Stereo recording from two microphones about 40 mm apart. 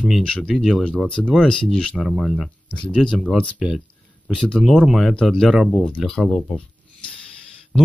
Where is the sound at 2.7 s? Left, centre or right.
Left.